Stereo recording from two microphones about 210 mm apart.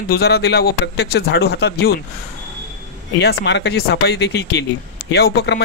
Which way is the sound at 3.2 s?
55° left (ahead or behind).